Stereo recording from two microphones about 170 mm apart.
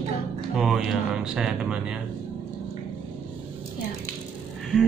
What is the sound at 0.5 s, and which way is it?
Speech, centre (ahead or behind).